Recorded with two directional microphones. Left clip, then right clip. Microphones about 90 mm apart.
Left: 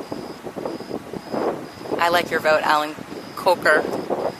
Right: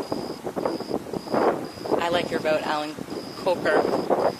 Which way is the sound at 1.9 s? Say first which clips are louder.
Left 5 dB; 35° left (ahead or behind).